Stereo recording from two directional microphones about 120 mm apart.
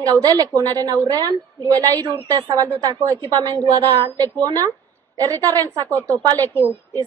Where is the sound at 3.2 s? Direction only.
35° right (ahead or behind).